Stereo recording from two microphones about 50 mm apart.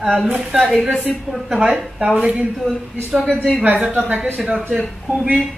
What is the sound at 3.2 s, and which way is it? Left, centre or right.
Speech, left.